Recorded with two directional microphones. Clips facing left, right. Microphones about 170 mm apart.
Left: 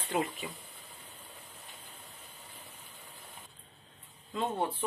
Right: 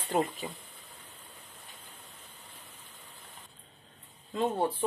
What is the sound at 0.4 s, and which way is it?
Speech, 30° right (ahead or behind).